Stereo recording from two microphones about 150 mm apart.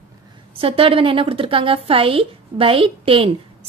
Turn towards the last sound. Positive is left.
turn(degrees=-35)  # may be behind; listen again after turning